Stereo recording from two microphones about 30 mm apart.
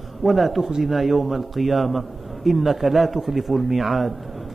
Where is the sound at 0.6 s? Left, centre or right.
Centre.